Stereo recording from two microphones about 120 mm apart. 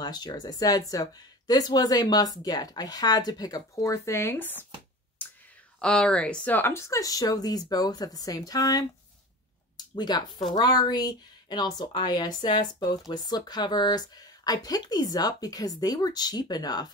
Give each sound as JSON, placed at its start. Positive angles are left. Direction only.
{"t": 0.0, "sound": "speech", "side_deg": 35}
{"t": 5.8, "sound": "speech", "side_deg": 5}